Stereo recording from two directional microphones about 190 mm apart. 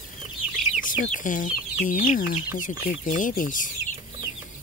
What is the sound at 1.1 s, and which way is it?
Speech, 45° left (ahead or behind).